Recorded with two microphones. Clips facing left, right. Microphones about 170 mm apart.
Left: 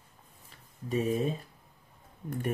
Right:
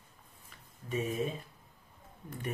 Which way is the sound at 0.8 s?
35° left (ahead or behind).